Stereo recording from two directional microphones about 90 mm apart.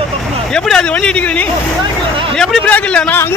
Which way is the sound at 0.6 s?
10° left (ahead or behind).